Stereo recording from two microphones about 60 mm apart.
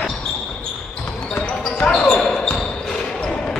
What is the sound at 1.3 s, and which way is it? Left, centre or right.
Basketball bounce, centre.